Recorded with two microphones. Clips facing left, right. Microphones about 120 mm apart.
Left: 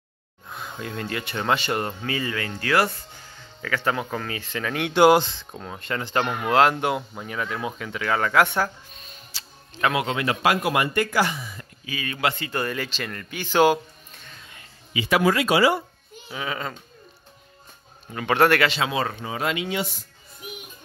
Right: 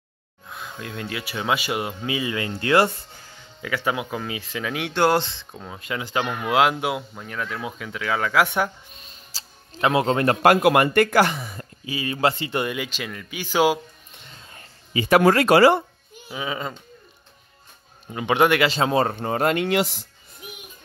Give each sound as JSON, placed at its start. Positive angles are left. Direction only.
{"t": 0.5, "sound": "speech", "side_deg": 0}
{"t": 3.6, "sound": "speech", "side_deg": -10}
{"t": 4.9, "sound": "speech", "side_deg": 10}
{"t": 5.4, "sound": "speech", "side_deg": 0}
{"t": 9.3, "sound": "music", "side_deg": -25}
{"t": 10.0, "sound": "speech", "side_deg": -45}
{"t": 11.8, "sound": "speech", "side_deg": -25}
{"t": 12.6, "sound": "speech", "side_deg": -10}
{"t": 14.5, "sound": "speech", "side_deg": -40}
{"t": 16.3, "sound": "speech", "side_deg": -15}
{"t": 18.1, "sound": "speech", "side_deg": -15}
{"t": 18.7, "sound": "speech", "side_deg": -40}